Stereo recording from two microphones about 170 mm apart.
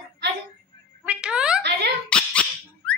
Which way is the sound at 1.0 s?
5° right (ahead or behind).